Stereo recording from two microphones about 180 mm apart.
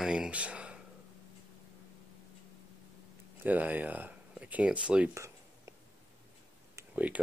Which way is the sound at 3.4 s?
10° right (ahead or behind).